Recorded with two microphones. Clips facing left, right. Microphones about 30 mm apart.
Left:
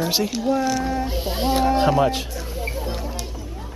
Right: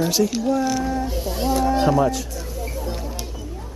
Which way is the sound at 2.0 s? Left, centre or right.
Left.